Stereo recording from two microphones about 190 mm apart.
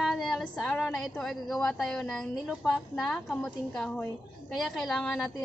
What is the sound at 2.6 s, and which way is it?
A woman's voice, centre (ahead or behind).